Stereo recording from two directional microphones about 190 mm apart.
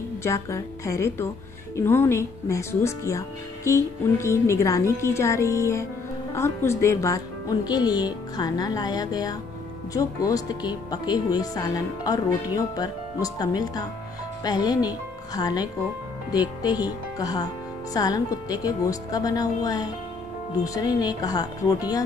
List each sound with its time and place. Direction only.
0.2 s speech: 15° left (ahead or behind)